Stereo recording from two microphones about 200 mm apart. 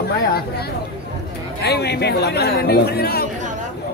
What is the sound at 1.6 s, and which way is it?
Speech, 55° left (ahead or behind).